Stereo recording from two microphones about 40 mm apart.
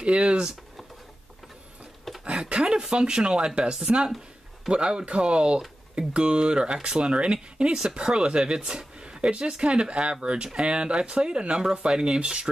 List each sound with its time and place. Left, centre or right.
0.0 s speech: right
2.1 s a sound: centre
2.5 s speech: right